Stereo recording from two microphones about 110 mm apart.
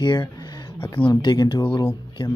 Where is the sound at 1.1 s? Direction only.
40° left (ahead or behind).